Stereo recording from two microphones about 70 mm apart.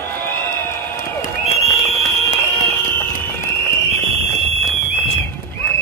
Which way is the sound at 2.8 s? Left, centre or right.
Left.